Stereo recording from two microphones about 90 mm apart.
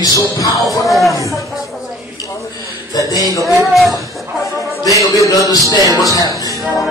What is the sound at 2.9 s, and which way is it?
Music, 45° left (ahead or behind).